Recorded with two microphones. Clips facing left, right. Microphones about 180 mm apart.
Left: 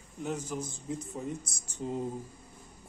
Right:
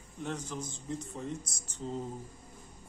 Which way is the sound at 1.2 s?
10° left (ahead or behind).